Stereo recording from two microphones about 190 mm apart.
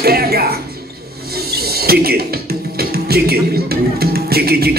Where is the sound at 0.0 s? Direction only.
55° right (ahead or behind).